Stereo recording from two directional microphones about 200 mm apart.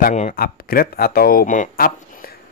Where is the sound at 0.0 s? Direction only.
40° left (ahead or behind).